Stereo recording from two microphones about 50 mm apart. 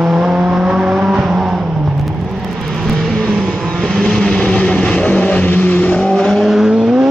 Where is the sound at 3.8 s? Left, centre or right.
Centre.